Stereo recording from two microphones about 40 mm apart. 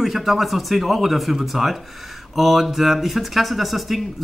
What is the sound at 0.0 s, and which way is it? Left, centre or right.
Speech, centre.